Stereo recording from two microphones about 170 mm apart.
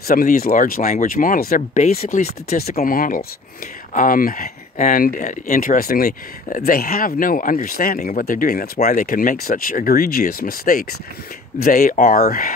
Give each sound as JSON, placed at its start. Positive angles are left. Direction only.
{"t": 0.1, "sound": "speech", "side_deg": 55}
{"t": 1.8, "sound": "speech", "side_deg": 40}
{"t": 2.2, "sound": "speech", "side_deg": 65}